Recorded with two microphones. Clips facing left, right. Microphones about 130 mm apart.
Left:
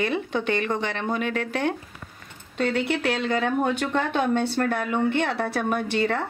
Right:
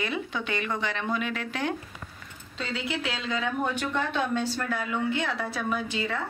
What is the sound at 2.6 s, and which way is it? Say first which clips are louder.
Speech: left 8 dB; 60° left (ahead or behind).